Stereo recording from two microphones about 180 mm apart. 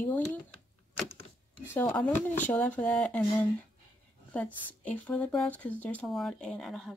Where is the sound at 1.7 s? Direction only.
5° left (ahead or behind).